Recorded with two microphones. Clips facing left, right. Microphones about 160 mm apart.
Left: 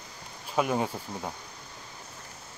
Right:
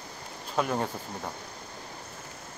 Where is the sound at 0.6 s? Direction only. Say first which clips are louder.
Left 2 dB; 5° left (ahead or behind).